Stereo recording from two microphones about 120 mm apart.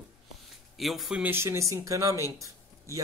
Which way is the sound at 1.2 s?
20° right (ahead or behind).